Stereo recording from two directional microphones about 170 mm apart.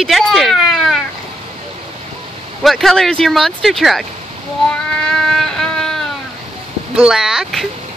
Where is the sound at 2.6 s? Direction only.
Centre (ahead or behind).